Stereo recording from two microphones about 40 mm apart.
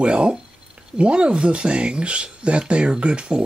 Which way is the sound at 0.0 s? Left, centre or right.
Right.